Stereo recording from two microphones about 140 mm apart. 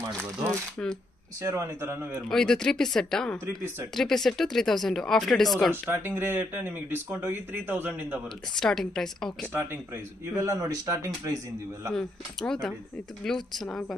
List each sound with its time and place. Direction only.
0.0 s speech: 20° right (ahead or behind)
2.2 s speech: 5° left (ahead or behind)
5.9 s speech: 15° right (ahead or behind)
8.5 s speech: 5° left (ahead or behind)
9.5 s speech: 15° right (ahead or behind)
11.9 s speech: 5° left (ahead or behind)